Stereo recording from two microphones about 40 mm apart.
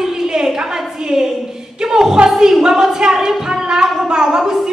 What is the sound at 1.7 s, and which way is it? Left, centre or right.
Music, centre.